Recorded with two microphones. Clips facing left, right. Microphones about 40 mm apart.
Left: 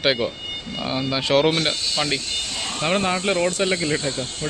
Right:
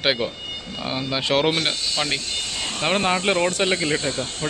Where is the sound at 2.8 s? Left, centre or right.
Right.